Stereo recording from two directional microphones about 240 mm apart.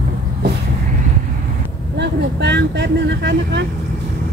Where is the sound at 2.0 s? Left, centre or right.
Right.